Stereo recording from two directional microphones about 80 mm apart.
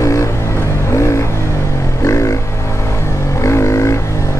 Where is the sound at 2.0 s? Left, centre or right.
Left.